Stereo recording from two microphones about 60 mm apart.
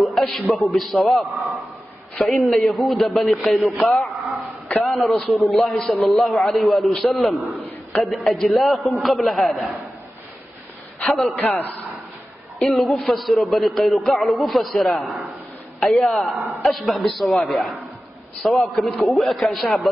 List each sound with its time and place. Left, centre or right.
0.0 s a sound: centre
0.3 s a man's voice: centre
11.4 s a man's voice: left
12.5 s a man's voice: centre